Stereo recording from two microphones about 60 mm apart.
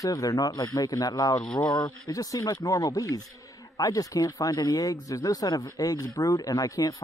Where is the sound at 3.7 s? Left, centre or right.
Left.